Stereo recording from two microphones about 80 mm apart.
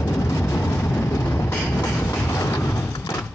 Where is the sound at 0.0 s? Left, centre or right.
Left.